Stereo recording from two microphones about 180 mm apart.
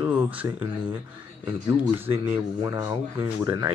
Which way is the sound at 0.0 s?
10° right (ahead or behind).